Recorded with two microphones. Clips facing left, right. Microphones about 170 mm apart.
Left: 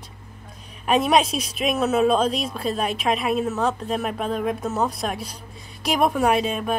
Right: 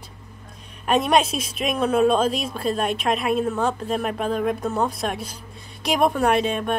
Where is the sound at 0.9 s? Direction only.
Centre (ahead or behind).